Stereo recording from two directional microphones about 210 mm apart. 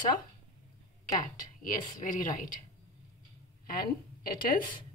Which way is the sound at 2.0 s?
40° left (ahead or behind).